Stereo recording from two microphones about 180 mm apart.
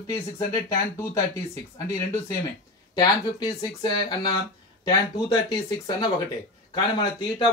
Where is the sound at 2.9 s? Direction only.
25° left (ahead or behind).